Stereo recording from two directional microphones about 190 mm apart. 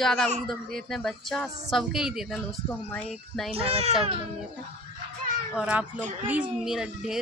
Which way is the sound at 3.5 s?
30° right (ahead or behind).